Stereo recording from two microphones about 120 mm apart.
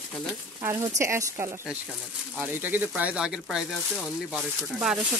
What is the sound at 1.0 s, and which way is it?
Speech, 25° right (ahead or behind).